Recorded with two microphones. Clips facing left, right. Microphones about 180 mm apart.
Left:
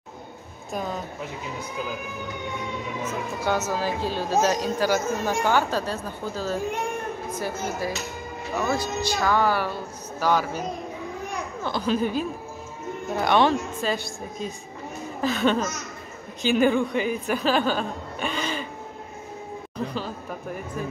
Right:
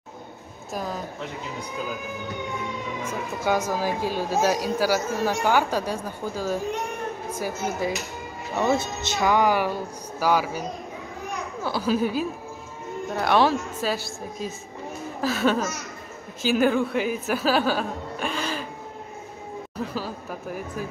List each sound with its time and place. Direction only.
0.7 s speech: centre (ahead or behind)
3.0 s a woman's voice: 10° right (ahead or behind)
8.5 s speech: 25° right (ahead or behind)
11.6 s speech: 5° right (ahead or behind)
19.9 s speech: 5° right (ahead or behind)